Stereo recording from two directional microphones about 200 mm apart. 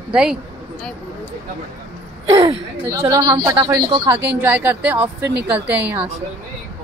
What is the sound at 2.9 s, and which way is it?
A woman's voice, 15° right (ahead or behind).